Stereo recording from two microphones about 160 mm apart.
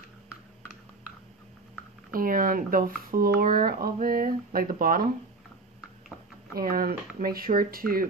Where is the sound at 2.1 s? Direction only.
60° right (ahead or behind).